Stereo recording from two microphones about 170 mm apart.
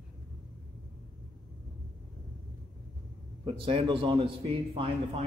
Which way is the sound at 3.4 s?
30° right (ahead or behind).